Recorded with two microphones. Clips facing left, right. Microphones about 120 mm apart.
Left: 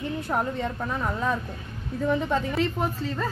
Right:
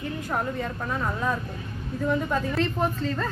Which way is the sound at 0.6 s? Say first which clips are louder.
Left 1 dB; 15° left (ahead or behind).